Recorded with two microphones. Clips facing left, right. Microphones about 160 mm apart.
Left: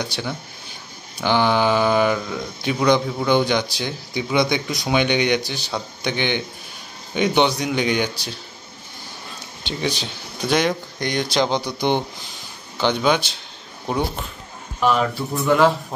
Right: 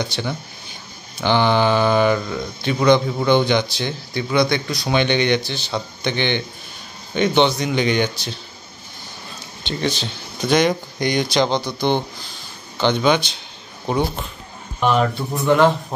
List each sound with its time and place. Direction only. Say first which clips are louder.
0.0 s speech: right 2 dB; 5° left (ahead or behind)
4.8 s speech: right 1 dB; 10° left (ahead or behind)
9.6 s speech: right 2 dB; 10° left (ahead or behind)
11.3 s a man's voice: right 2 dB; 10° left (ahead or behind)
12.8 s speech: right 2 dB; 5° left (ahead or behind)